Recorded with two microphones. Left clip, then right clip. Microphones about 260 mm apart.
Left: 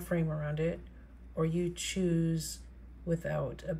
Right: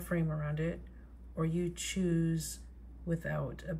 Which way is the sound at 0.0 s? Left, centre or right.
Centre.